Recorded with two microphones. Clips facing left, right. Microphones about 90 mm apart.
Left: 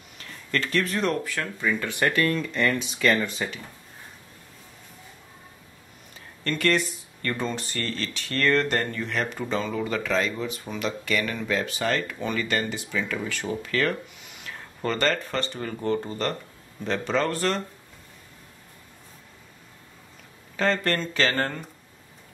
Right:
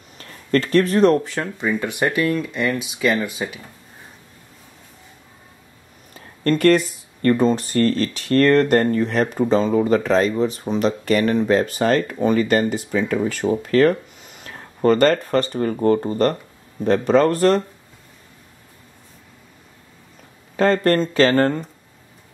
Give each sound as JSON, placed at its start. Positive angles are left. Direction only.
{"t": 0.2, "sound": "speech", "side_deg": -40}
{"t": 1.2, "sound": "speech", "side_deg": -25}
{"t": 6.4, "sound": "a man's voice", "side_deg": -45}
{"t": 20.5, "sound": "speech", "side_deg": -40}